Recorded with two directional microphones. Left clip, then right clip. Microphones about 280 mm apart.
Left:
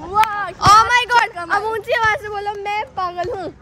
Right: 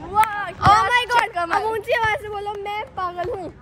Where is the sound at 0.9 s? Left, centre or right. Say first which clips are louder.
Left 4 dB; centre.